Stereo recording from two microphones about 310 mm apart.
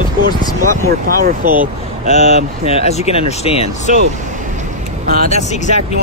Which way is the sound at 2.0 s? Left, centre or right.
Left.